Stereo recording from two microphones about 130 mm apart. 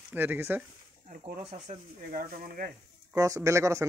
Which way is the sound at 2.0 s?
90° right.